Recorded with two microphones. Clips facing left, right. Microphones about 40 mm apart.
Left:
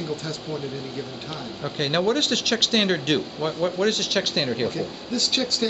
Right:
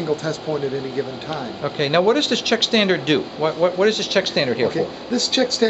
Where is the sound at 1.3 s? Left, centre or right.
Centre.